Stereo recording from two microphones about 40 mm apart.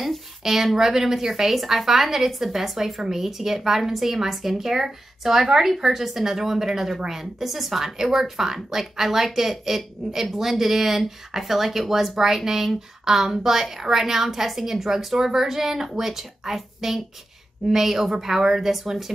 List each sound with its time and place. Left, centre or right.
0.4 s speech: centre